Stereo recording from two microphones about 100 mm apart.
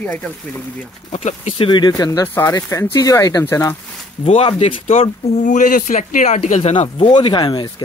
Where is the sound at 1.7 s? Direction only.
45° left (ahead or behind).